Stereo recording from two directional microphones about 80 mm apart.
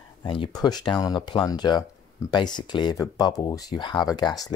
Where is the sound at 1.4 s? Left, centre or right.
Left.